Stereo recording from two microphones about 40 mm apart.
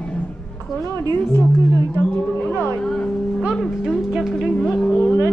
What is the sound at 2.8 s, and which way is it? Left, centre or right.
Speech, left.